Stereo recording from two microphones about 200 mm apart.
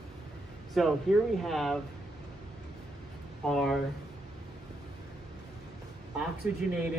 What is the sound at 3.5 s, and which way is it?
Speech, centre (ahead or behind).